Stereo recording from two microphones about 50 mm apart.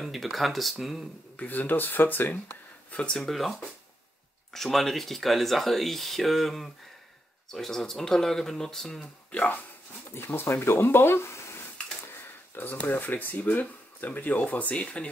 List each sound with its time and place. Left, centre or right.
0.0 s speech: centre
1.3 s speech: left
3.2 s speech: centre
10.1 s speech: left
12.5 s speech: left